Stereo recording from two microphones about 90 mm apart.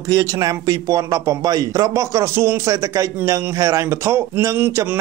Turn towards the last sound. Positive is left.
turn(degrees=-30)  # may be behind; listen again after turning